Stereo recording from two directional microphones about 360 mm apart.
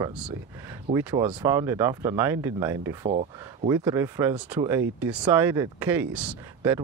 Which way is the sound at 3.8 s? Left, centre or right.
Centre.